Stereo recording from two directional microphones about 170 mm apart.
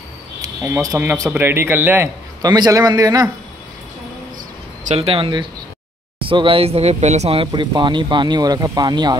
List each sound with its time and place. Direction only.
0.4 s a man's voice: 15° right (ahead or behind)
2.4 s speech: 25° right (ahead or behind)
4.9 s speech: 35° right (ahead or behind)